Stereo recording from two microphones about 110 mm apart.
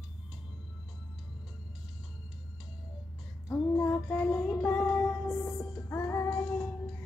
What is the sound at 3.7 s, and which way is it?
Child singing, 15° left (ahead or behind).